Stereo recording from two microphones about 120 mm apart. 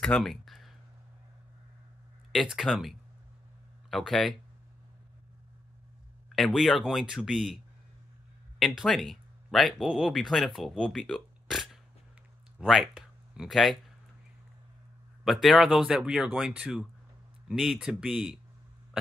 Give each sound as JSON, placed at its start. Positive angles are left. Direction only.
{"t": 0.0, "sound": "a sound", "side_deg": 5}
{"t": 2.6, "sound": "speech", "side_deg": 0}
{"t": 6.2, "sound": "speech", "side_deg": 0}
{"t": 15.4, "sound": "speech", "side_deg": 0}